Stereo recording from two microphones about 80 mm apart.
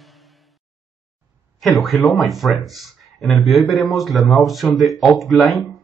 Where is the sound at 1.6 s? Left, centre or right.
Centre.